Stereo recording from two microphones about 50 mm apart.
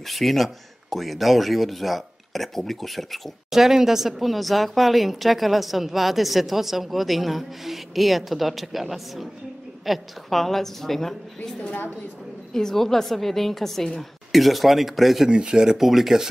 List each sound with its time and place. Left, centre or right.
0.0 s speech: centre
12.5 s speech: centre
15.2 s speech: centre
15.8 s speech: centre